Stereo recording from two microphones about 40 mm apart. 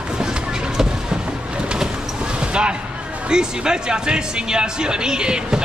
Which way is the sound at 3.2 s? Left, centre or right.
Centre.